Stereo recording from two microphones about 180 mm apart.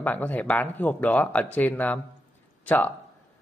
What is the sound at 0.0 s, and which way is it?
A man's voice, 10° left (ahead or behind).